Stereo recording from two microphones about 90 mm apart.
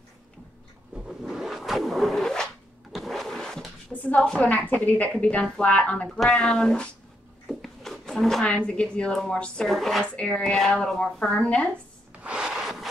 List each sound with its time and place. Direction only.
0.9 s zipper: 5° right (ahead or behind)
2.9 s vehicle: centre (ahead or behind)
3.9 s speech: 15° left (ahead or behind); by 10.0 s centre (ahead or behind)
10.1 s speech: 15° left (ahead or behind)
12.2 s wood: 10° right (ahead or behind)